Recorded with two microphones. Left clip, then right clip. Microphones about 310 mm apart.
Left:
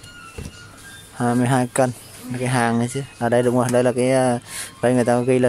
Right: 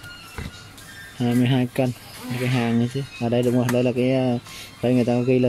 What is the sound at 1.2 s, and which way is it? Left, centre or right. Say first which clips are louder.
Speech: left 3 dB; left.